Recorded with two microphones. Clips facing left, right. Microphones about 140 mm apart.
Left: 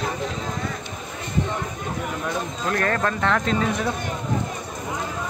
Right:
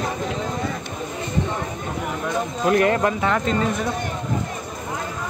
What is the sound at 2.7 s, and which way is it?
Speech, 20° right (ahead or behind).